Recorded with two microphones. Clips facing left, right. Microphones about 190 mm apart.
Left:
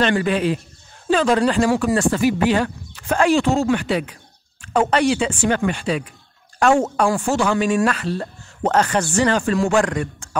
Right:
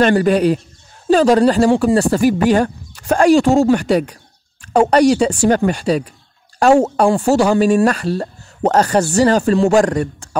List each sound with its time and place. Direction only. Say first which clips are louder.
0.0 s speech: right 6 dB; 40° right (ahead or behind)